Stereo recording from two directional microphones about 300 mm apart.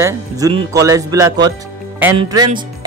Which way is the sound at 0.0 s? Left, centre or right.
Centre.